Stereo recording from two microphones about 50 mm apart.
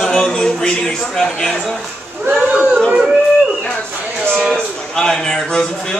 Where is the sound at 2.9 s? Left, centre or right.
Centre.